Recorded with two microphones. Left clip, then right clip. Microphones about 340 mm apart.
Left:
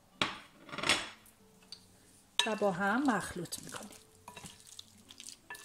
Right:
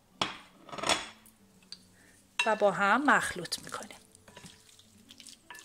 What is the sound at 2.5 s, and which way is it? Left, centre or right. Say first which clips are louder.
Speech: right 9 dB; right.